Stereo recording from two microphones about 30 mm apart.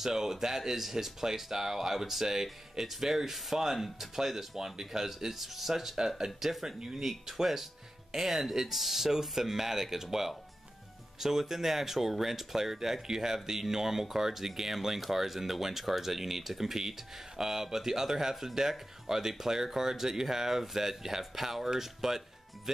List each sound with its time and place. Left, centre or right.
0.0 s speech: centre
5.9 s speech: centre
11.1 s speech: centre